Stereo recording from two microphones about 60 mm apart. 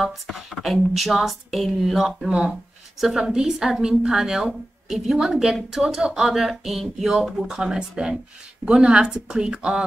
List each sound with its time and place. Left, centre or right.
0.0 s a woman's voice: centre